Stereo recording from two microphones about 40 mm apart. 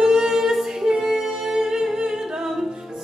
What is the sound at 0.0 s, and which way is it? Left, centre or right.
Music, centre.